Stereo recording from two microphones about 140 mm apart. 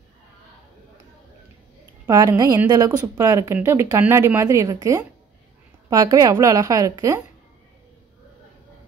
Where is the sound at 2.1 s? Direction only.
25° right (ahead or behind).